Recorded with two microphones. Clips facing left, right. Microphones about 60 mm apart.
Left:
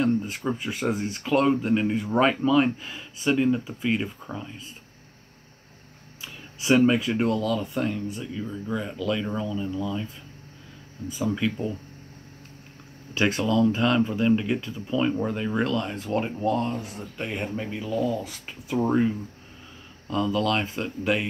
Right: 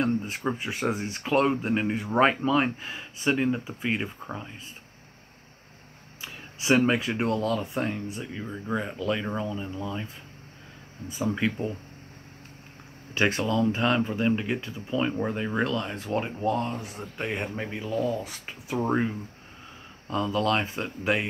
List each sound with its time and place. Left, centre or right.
0.2 s speech: right
1.2 s speech: right
6.9 s speech: right
8.8 s speech: right
11.1 s speech: right
13.2 s speech: right
20.1 s speech: right